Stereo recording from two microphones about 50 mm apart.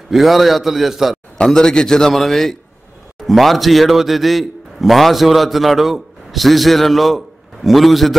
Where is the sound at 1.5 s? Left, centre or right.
Centre.